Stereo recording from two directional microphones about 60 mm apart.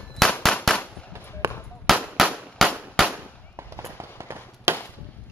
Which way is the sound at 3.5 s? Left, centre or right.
Right.